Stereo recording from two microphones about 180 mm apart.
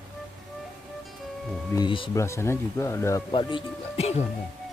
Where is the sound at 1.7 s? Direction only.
25° left (ahead or behind).